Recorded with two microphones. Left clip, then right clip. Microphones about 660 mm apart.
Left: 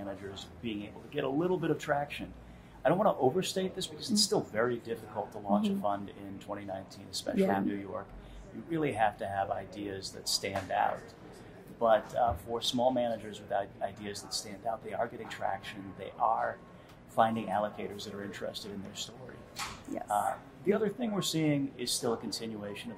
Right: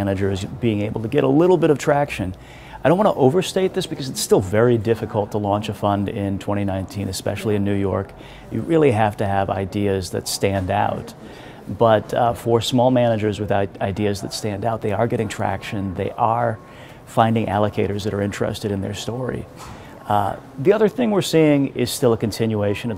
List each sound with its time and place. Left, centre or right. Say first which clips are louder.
0.0 s speech: right 19 dB; right
20.6 s speech: right 15 dB; right